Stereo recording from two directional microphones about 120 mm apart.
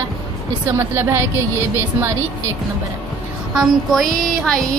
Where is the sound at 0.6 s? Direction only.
20° right (ahead or behind).